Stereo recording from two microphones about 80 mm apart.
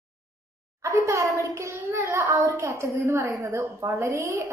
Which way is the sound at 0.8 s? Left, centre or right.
Right.